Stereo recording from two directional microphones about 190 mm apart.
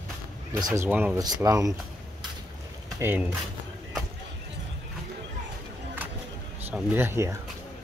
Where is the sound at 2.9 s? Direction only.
10° right (ahead or behind).